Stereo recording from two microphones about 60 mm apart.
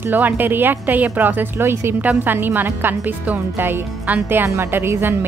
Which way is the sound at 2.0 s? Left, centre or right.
Right.